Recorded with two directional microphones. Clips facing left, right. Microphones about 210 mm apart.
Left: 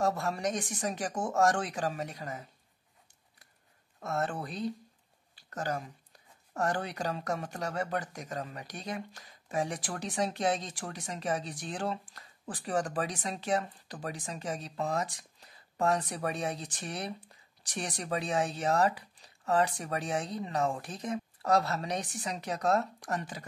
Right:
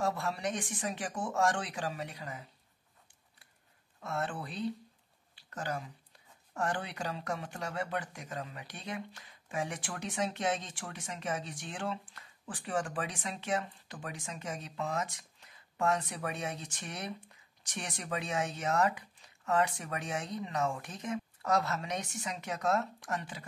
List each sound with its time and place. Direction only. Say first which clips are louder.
0.0 s speech: left 3 dB; 45° left (ahead or behind)
4.0 s speech: left 3 dB; 40° left (ahead or behind)